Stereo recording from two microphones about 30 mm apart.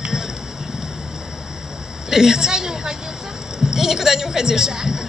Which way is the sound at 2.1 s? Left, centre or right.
Centre.